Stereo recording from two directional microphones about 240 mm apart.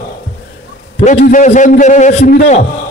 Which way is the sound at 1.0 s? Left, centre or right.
Left.